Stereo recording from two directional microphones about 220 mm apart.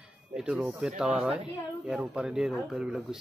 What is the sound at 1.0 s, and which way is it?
Speech, 5° right (ahead or behind).